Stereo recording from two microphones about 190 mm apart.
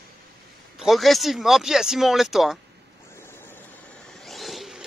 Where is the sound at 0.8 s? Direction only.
Centre (ahead or behind).